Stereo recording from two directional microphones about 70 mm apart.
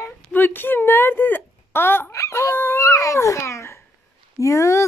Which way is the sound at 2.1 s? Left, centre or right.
Left.